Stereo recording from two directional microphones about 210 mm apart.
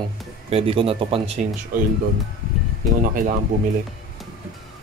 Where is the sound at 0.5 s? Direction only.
25° right (ahead or behind).